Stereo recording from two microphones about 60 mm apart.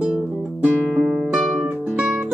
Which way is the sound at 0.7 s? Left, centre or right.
Right.